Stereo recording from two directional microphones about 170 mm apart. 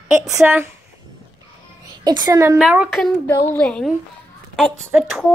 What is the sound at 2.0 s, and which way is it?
Speech, 25° right (ahead or behind).